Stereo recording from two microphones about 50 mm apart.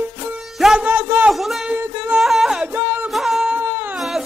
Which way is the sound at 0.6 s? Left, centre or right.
Centre.